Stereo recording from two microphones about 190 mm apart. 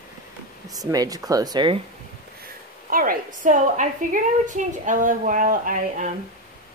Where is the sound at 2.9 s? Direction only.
45° right (ahead or behind).